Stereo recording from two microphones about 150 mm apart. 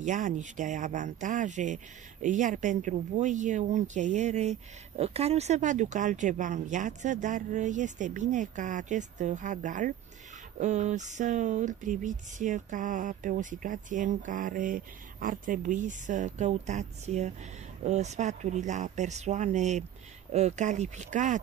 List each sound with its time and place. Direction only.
0.0 s speech: 55° right (ahead or behind)